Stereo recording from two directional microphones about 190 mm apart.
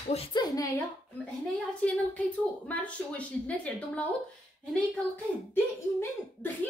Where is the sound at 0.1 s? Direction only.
25° left (ahead or behind).